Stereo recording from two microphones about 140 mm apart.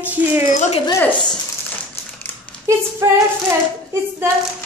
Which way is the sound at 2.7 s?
20° right (ahead or behind).